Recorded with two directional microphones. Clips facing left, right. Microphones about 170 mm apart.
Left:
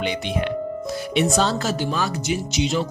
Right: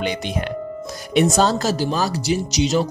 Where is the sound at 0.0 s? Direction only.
45° right (ahead or behind).